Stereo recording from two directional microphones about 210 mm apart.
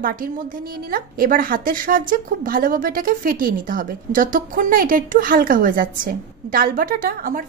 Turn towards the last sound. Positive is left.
turn(degrees=-40)  # may be behind; listen again after turning